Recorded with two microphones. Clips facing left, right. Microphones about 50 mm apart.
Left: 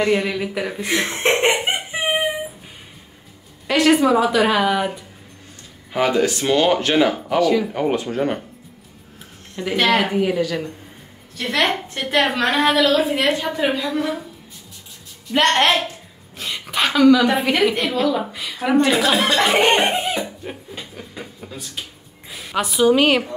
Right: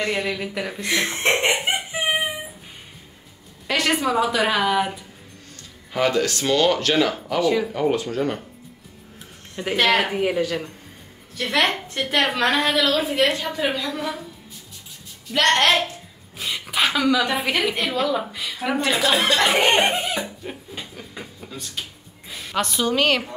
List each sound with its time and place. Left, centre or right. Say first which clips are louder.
0.0 s a woman's voice: left 5 dB; centre
0.8 s speech: left 1 dB; centre
1.5 s a sound: left 2 dB; left
3.6 s a woman's voice: left 6 dB; centre
5.9 s speech: left 3 dB; centre
7.4 s a woman's voice: left 1 dB; centre
7.7 s speech: left 1 dB; left
9.8 s a woman's voice: left 2 dB; centre
11.3 s a woman's voice: left 1 dB; centre
15.3 s speech: left 2 dB; centre
16.3 s a woman's voice: left 1 dB; centre
19.8 s a sound: left 1 dB; left
20.2 s a sound: left 2 dB; centre
22.3 s a woman's voice: left 2 dB; centre